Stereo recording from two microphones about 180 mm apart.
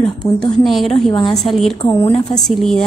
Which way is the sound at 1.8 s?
20° left (ahead or behind).